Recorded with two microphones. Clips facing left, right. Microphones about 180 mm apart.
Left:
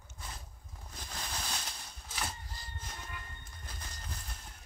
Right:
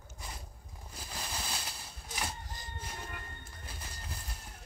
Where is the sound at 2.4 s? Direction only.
45° right (ahead or behind).